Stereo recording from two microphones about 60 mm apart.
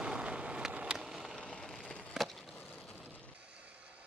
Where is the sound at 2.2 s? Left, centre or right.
Centre.